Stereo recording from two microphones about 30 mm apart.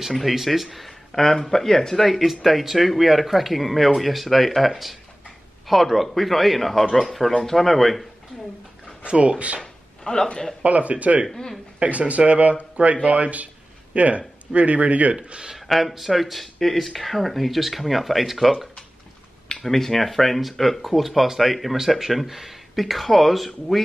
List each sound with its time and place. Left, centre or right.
0.2 s speech: centre
1.1 s speech: centre
2.0 s speech: centre
9.0 s speech: right
9.6 s a sound: left
10.6 s speech: right
15.5 s speech: centre
19.5 s speech: centre